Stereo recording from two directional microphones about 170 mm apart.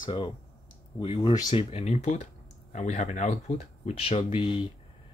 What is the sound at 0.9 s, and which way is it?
Speech, 30° left (ahead or behind).